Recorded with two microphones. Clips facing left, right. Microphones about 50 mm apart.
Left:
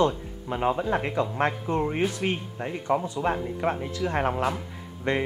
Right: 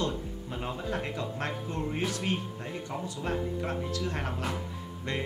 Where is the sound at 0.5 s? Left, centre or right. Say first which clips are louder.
Left 10 dB; left.